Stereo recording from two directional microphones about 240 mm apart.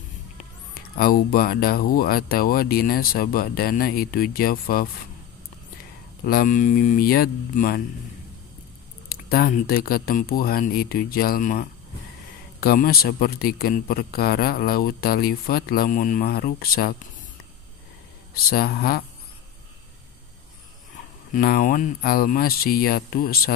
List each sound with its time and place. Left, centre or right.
0.9 s a man's voice: left
6.2 s a man's voice: left
9.1 s a man's voice: left
18.3 s a man's voice: left
21.3 s a man's voice: left